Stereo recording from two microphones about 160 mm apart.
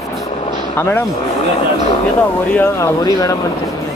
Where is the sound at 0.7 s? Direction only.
15° left (ahead or behind).